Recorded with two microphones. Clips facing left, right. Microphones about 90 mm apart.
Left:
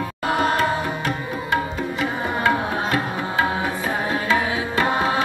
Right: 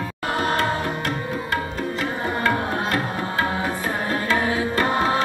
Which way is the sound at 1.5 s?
15° left (ahead or behind).